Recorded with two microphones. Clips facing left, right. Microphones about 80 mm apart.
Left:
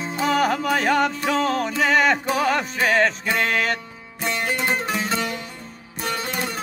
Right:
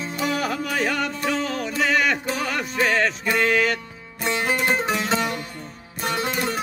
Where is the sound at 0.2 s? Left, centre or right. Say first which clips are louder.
Left 5 dB; left.